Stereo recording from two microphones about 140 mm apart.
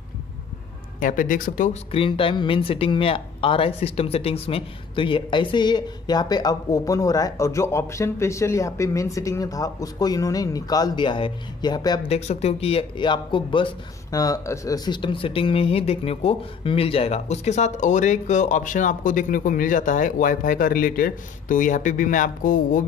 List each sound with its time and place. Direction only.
0.9 s speech: 75° left (ahead or behind)
1.7 s speech: 40° left (ahead or behind)
12.1 s speech: 50° left (ahead or behind); by 22.8 s 75° left (ahead or behind)